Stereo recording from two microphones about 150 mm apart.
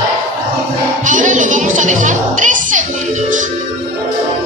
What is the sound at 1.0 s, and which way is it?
Music, 60° right (ahead or behind).